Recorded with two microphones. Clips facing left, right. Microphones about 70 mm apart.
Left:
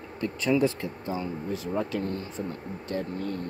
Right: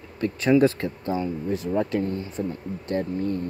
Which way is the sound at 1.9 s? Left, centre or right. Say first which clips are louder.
Right 5 dB; right.